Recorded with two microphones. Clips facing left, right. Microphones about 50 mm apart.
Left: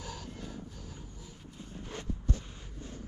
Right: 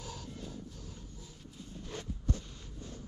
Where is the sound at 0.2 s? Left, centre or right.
Left.